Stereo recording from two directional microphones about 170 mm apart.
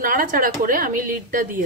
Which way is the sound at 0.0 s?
55° right (ahead or behind).